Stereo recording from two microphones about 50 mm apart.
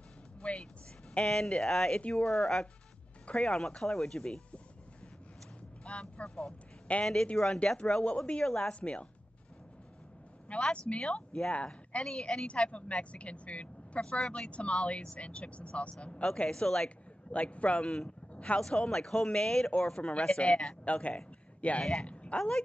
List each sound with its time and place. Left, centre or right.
0.4 s speech: left
1.2 s speech: centre
2.0 s a woman's voice: left
2.3 s speech: centre
5.9 s a woman's voice: left
10.5 s a woman's voice: left
12.0 s a woman's voice: centre
17.3 s a woman's voice: left
17.8 s speech: centre
18.3 s a sound: left
18.6 s speech: centre
20.8 s a woman's voice: left
22.0 s a sound: left